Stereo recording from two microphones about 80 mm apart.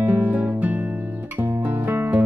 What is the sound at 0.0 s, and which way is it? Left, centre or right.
Music, right.